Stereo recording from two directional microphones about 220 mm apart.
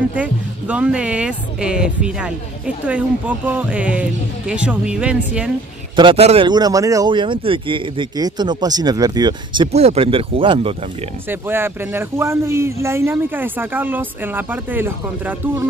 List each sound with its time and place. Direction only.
0.1 s speech: 5° right (ahead or behind)
5.9 s speech: 25° right (ahead or behind)
11.2 s a man's voice: 10° right (ahead or behind)